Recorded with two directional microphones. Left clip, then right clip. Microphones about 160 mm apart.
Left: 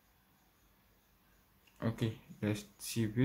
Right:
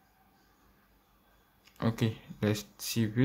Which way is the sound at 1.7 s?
20° right (ahead or behind).